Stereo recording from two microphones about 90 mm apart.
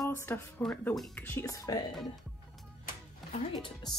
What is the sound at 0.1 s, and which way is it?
Speech, 25° left (ahead or behind).